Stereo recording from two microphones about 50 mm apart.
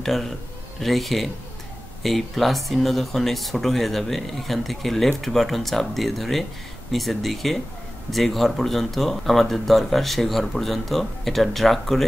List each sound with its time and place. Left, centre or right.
0.0 s a man's voice: centre